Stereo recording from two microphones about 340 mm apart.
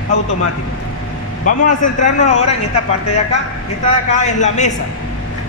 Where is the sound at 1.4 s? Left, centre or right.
Left.